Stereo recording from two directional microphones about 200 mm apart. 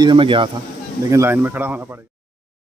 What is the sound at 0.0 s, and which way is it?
Speech, 25° right (ahead or behind).